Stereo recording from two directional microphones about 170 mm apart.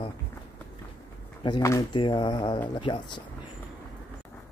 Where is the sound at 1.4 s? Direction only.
20° left (ahead or behind).